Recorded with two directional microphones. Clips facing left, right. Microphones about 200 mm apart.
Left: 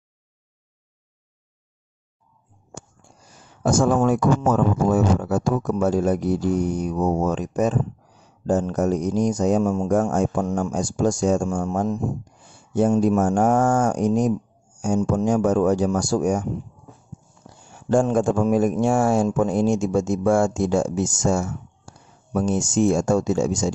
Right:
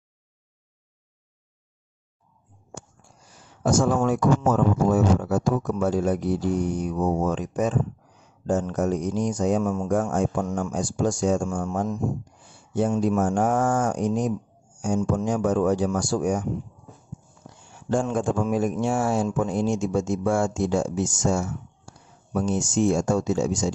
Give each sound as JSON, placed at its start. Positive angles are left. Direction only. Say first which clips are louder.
{"t": 3.6, "sound": "a man's voice", "louder": "left 3 dB", "side_deg": 50}
{"t": 17.7, "sound": "a man's voice", "louder": "left 5 dB", "side_deg": 45}